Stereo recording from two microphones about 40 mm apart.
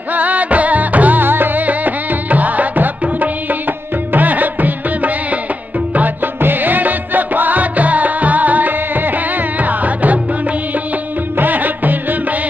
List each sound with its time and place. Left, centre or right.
0.1 s music: right
1.2 s music: right
11.3 s music: right